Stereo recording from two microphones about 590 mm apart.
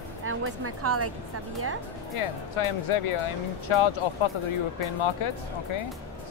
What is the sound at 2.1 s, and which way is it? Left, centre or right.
Speech, left.